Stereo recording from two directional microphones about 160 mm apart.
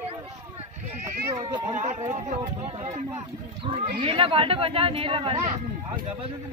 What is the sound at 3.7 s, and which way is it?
Speech, 35° right (ahead or behind).